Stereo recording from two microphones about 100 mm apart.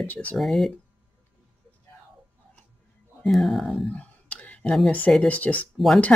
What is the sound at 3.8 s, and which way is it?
Clicking, 15° left (ahead or behind).